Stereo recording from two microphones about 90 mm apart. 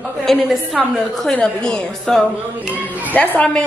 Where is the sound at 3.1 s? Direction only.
20° left (ahead or behind).